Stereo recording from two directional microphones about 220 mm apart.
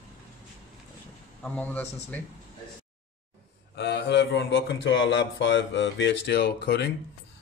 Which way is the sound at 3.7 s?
50° left (ahead or behind).